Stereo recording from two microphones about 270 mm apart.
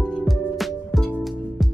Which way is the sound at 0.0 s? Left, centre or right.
Centre.